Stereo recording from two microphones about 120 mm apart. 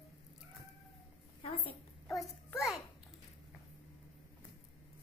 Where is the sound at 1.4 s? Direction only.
55° left (ahead or behind).